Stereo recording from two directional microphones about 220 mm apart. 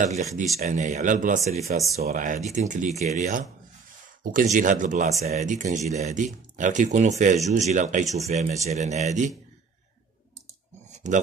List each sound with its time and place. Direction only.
0.0 s speech: 30° right (ahead or behind)
10.9 s pig: 30° right (ahead or behind)